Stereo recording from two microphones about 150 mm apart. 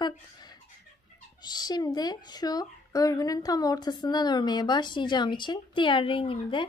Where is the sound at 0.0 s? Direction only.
30° left (ahead or behind).